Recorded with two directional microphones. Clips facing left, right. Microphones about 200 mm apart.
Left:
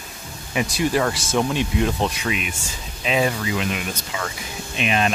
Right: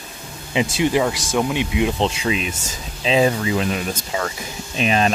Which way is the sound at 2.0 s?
30° right (ahead or behind).